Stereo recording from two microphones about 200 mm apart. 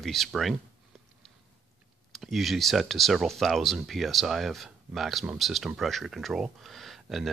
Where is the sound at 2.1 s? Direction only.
Centre (ahead or behind).